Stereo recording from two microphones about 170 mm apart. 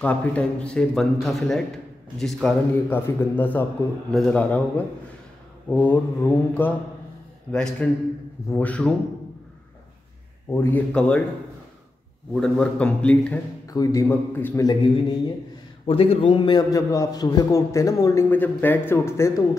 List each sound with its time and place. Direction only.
0.0 s mantra: 10° left (ahead or behind)
1.2 s a man's voice: centre (ahead or behind)
2.9 s mantra: 10° left (ahead or behind)
7.5 s a man's voice: 5° left (ahead or behind)
8.5 s mantra: 10° left (ahead or behind)
10.5 s mantra: 10° left (ahead or behind)
12.4 s mantra: 5° left (ahead or behind)
13.7 s a man's voice: 20° left (ahead or behind)
15.9 s a man's voice: 35° left (ahead or behind); by 19.4 s 15° left (ahead or behind)